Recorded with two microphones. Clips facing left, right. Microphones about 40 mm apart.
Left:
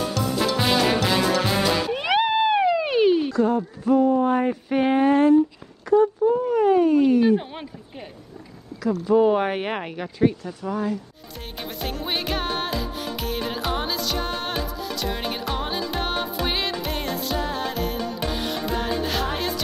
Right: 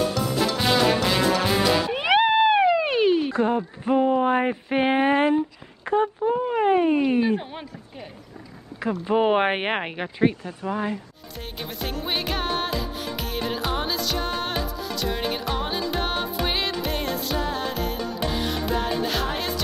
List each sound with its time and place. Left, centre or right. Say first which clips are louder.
0.4 s music: even; centre
1.9 s cat: right 2 dB; centre
3.3 s speech: left 1 dB; right
5.9 s a sound: left 4 dB; right
8.8 s speech: left 2 dB; right
9.1 s speech: left 1 dB; right
11.8 s music: even; centre